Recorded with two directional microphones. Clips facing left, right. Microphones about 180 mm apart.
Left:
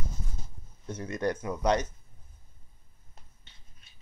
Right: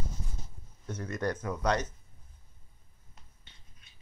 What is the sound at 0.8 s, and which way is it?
Speech, 15° left (ahead or behind).